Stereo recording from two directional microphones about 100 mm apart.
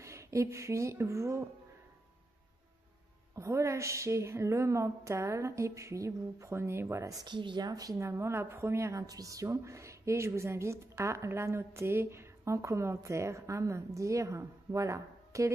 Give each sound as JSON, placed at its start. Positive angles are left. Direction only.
{"t": 0.0, "sound": "speech", "side_deg": -30}
{"t": 3.3, "sound": "a woman's voice", "side_deg": -30}
{"t": 7.3, "sound": "a woman's voice", "side_deg": -50}